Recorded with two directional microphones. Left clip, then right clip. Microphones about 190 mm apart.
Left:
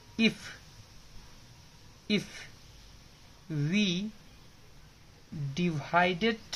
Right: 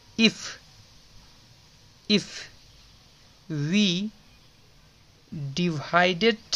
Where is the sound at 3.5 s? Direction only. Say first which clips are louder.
Right 6 dB; 40° right (ahead or behind).